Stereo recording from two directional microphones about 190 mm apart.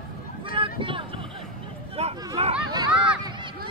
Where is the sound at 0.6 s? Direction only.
25° right (ahead or behind).